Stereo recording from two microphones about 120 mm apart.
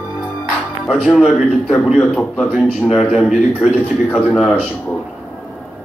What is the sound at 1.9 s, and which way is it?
Speech, 10° left (ahead or behind).